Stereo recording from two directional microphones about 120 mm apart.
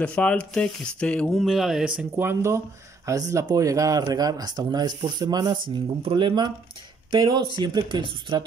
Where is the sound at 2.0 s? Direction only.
20° right (ahead or behind).